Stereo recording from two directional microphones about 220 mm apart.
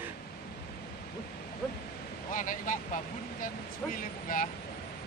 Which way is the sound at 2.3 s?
35° left (ahead or behind).